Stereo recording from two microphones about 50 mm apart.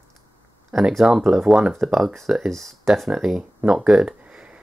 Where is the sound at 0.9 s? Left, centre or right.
Centre.